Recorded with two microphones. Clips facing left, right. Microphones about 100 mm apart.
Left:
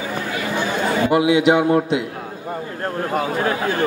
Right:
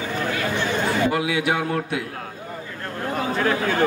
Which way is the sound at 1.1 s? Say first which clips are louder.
Left 8 dB; 20° left (ahead or behind).